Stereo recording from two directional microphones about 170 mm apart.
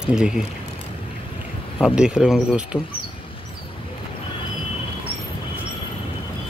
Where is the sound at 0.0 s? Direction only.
5° right (ahead or behind).